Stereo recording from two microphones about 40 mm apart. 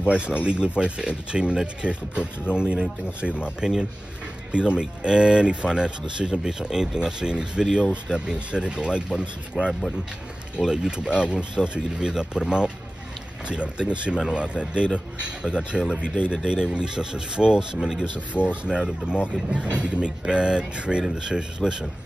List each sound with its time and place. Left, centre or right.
0.0 s speech: right
9.6 s speech: centre
15.7 s speech: centre
16.3 s speech: centre
18.3 s speech: right
18.7 s speech: right